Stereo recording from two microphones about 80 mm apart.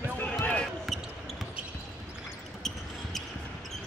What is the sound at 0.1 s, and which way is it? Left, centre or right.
Basketball bounce, left.